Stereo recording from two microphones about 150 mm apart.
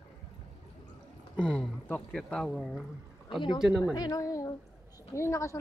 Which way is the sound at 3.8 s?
25° left (ahead or behind).